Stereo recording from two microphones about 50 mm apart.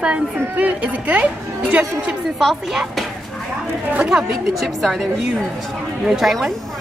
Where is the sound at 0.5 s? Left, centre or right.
Right.